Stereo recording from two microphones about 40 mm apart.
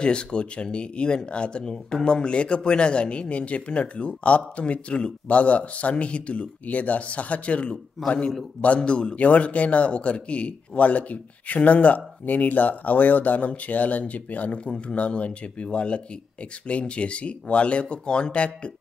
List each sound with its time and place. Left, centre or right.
0.0 s speech: left
8.0 s a man's voice: centre
8.5 s a man's voice: left
14.6 s speech: left